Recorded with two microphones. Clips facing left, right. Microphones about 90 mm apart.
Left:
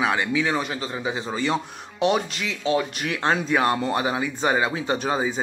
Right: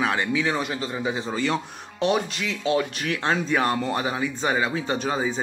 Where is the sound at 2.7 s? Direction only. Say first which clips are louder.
Left 1 dB; 15° left (ahead or behind).